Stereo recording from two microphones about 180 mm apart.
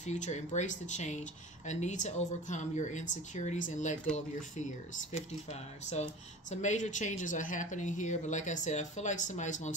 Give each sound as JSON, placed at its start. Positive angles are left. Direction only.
{"t": 0.0, "sound": "speech", "side_deg": 40}